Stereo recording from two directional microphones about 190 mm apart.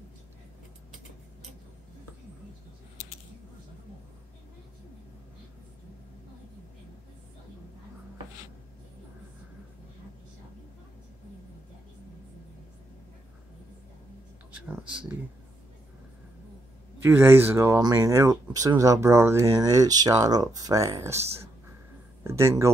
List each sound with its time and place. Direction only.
14.5 s speech: 5° right (ahead or behind)
17.0 s speech: 10° right (ahead or behind)